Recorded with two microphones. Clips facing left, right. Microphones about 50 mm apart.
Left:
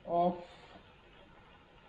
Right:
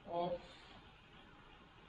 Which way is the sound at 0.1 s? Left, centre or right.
Centre.